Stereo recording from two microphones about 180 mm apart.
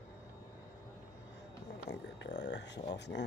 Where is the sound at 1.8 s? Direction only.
70° left (ahead or behind).